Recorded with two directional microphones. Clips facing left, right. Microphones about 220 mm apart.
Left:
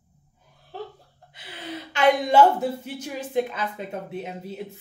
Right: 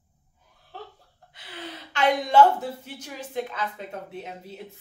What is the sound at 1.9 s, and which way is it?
A woman's voice, 5° left (ahead or behind).